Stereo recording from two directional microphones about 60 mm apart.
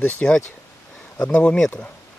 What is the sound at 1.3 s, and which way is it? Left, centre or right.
Speech, left.